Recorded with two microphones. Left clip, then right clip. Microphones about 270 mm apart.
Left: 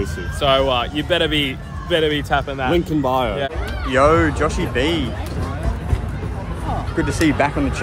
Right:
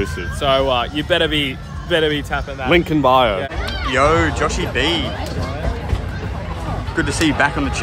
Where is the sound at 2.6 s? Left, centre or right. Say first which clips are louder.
Right 8 dB; centre.